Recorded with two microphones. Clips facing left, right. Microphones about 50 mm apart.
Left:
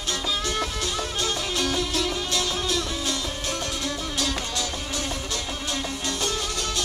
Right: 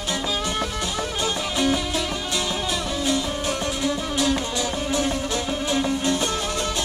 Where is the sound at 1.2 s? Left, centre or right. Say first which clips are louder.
Right 4 dB; centre.